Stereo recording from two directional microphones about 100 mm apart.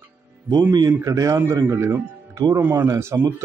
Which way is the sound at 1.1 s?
35° right (ahead or behind).